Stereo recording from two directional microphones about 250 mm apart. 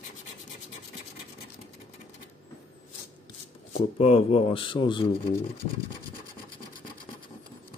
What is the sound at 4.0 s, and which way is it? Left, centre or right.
Speech, left.